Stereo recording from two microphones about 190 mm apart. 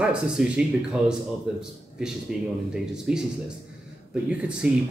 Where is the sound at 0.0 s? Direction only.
5° right (ahead or behind).